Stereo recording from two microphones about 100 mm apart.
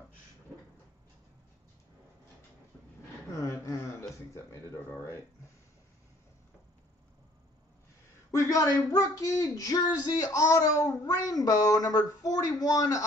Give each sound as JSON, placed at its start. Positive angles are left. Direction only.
{"t": 3.3, "sound": "a sound", "side_deg": 30}
{"t": 4.1, "sound": "speech", "side_deg": 30}
{"t": 8.3, "sound": "speech", "side_deg": 35}